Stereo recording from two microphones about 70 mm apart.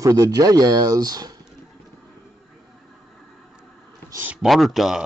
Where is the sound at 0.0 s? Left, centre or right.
Right.